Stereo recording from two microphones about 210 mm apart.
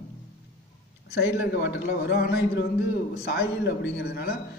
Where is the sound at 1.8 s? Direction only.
50° left (ahead or behind).